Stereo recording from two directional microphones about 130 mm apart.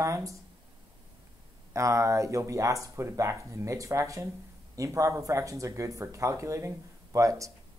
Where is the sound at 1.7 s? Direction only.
25° right (ahead or behind).